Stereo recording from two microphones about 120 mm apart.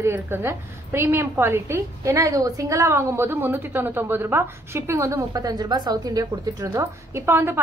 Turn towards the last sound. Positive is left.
turn(degrees=-20)  # may be behind; listen again after turning